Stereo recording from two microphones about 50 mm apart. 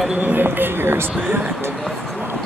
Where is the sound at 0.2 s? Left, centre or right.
Right.